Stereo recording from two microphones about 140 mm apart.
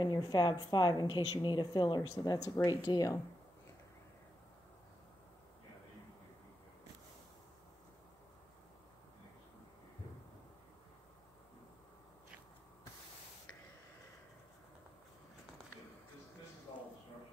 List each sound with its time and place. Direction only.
0.0 s a woman's voice: 30° left (ahead or behind)